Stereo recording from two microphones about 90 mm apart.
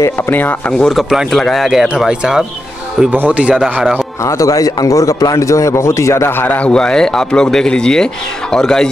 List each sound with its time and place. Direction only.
0.3 s a man's voice: 20° left (ahead or behind)
0.7 s speech: 5° left (ahead or behind)
3.1 s speech: 20° right (ahead or behind)
4.2 s a man's voice: 35° left (ahead or behind); by 8.9 s 5° left (ahead or behind)